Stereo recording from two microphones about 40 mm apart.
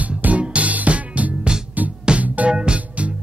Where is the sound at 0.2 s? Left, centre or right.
Right.